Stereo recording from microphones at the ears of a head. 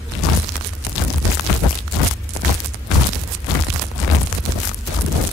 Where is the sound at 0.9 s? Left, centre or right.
Left.